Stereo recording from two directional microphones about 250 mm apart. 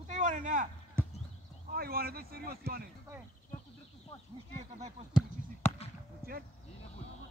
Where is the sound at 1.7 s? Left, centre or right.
Right.